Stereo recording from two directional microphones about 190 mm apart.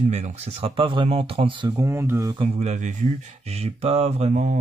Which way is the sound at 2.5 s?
40° right (ahead or behind).